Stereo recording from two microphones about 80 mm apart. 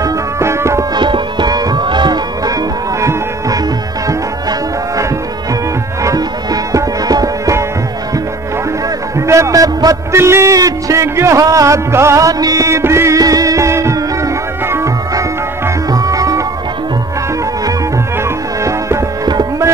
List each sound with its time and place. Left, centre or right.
0.0 s music: right
0.9 s music: right
3.0 s music: right
6.0 s music: right
9.3 s music: right
13.2 s music: right
18.6 s music: right